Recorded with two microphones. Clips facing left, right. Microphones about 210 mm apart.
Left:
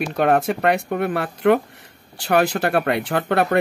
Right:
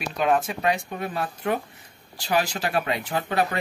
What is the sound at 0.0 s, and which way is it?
Speech, 60° left (ahead or behind).